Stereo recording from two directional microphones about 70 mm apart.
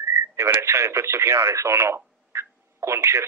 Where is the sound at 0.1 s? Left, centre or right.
Right.